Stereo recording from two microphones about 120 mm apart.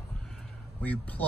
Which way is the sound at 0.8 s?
10° left (ahead or behind).